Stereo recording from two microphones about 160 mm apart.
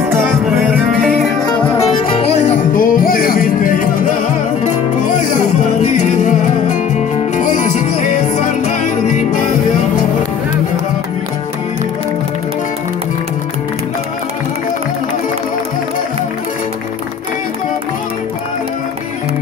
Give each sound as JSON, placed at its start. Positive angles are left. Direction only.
{"t": 0.9, "sound": "music", "side_deg": 0}
{"t": 2.7, "sound": "music", "side_deg": 60}
{"t": 5.8, "sound": "music", "side_deg": 50}